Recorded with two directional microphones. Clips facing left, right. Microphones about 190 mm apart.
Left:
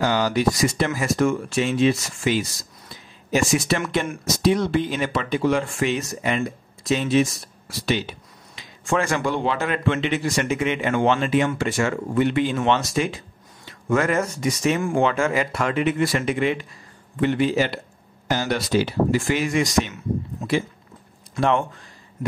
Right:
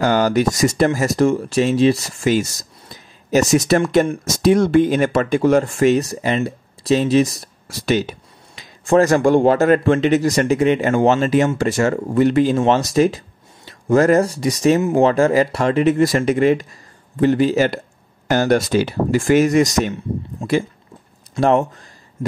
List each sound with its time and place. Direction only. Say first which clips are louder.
0.0 s speech: right 4 dB; 50° right (ahead or behind)
18.3 s speech: right 6 dB; 55° right (ahead or behind)
20.4 s speech: right 5 dB; 30° right (ahead or behind)
21.4 s speech: right 5 dB; 40° right (ahead or behind)